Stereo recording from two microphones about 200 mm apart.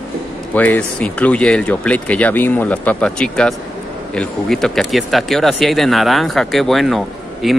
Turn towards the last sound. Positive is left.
turn(degrees=0)  # may be behind; listen again after turning